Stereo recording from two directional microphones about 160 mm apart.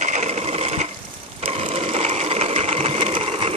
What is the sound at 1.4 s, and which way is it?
Sewing machine, 40° right (ahead or behind).